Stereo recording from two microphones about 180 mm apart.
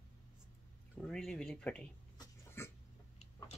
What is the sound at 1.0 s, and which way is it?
Speech, centre (ahead or behind).